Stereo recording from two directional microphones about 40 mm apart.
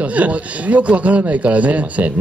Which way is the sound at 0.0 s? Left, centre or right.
Right.